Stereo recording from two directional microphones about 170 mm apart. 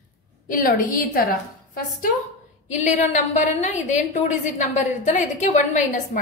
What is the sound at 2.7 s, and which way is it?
A woman's voice, 45° left (ahead or behind).